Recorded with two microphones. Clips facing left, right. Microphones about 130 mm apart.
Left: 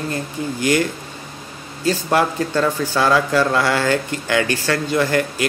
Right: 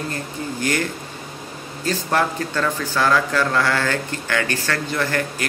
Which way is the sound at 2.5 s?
25° left (ahead or behind).